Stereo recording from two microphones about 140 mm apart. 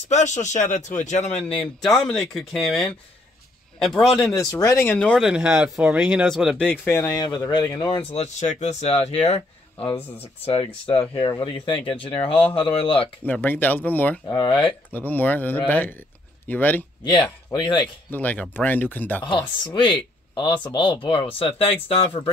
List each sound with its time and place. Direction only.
0.1 s speech: 55° left (ahead or behind)
1.9 s speech: centre (ahead or behind)
4.5 s speech: 25° left (ahead or behind)
4.9 s speech: 5° left (ahead or behind)
6.7 s speech: 15° left (ahead or behind)
7.2 s speech: 30° left (ahead or behind)
8.1 s speech: 50° left (ahead or behind)
13.2 s speech: 10° left (ahead or behind)
14.2 s speech: 30° left (ahead or behind)
14.9 s speech: 15° left (ahead or behind)
17.5 s speech: 35° left (ahead or behind)
18.1 s speech: 10° left (ahead or behind)
19.2 s speech: 35° left (ahead or behind)